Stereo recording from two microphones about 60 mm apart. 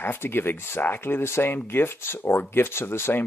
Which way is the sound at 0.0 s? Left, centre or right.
Left.